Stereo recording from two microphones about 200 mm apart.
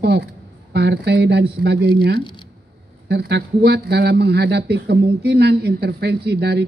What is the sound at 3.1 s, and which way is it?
Speech, 55° right (ahead or behind).